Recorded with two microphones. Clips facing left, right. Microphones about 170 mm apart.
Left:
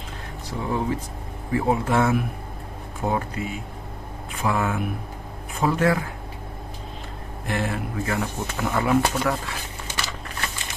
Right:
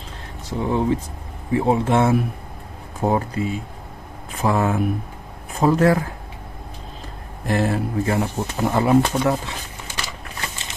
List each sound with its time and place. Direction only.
0.5 s speech: 25° right (ahead or behind)
7.4 s speech: 35° right (ahead or behind); by 9.6 s 20° right (ahead or behind)